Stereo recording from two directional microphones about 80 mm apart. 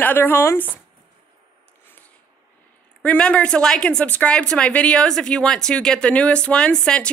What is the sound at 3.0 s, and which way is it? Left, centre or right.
Speech, centre.